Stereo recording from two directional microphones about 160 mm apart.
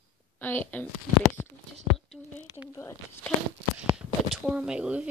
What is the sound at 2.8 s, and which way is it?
Speech, 15° left (ahead or behind).